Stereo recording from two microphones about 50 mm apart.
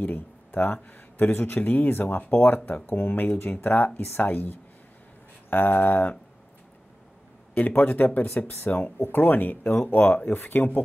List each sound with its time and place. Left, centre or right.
0.0 s speech: left
7.5 s speech: left